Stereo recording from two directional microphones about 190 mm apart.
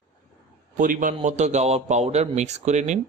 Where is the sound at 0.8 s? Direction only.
45° right (ahead or behind).